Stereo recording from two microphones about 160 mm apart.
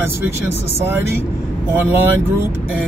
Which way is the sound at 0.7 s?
15° right (ahead or behind).